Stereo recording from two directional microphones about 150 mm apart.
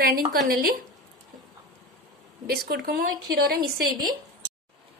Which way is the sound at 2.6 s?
90° right.